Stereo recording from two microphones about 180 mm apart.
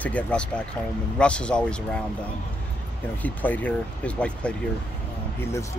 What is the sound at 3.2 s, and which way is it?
Speech, 10° left (ahead or behind).